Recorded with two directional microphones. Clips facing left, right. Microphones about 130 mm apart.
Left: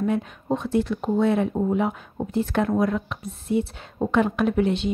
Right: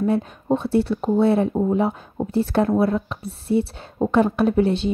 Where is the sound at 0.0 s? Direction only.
30° right (ahead or behind).